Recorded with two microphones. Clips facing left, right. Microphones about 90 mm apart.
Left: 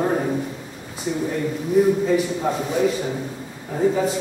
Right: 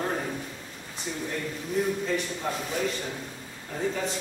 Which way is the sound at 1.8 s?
5° left (ahead or behind).